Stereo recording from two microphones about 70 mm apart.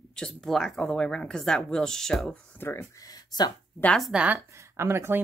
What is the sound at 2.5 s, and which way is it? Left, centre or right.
Speech, left.